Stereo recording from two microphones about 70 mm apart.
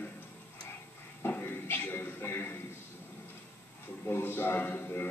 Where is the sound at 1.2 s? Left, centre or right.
Left.